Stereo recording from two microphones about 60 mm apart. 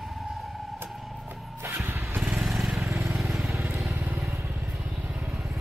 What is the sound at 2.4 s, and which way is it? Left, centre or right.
Vehicle, centre.